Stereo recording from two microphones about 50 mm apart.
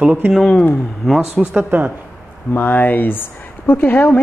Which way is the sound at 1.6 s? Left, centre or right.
Right.